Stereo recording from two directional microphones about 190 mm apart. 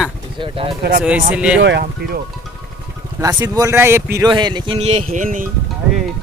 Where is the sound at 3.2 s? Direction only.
15° right (ahead or behind); by 5.5 s 45° right (ahead or behind).